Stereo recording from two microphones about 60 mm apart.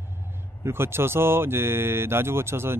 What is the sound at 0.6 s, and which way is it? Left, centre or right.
Speech, right.